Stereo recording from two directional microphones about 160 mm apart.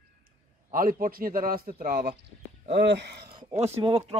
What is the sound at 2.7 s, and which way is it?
Speech, 90° right.